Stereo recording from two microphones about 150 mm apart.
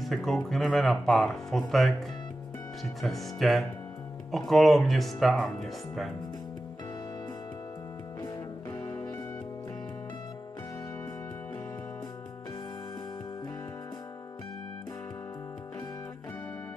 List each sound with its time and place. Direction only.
0.0 s speech: centre (ahead or behind)
8.2 s music: 15° left (ahead or behind)